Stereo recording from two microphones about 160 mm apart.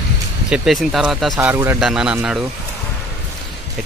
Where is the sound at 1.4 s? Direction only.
15° right (ahead or behind).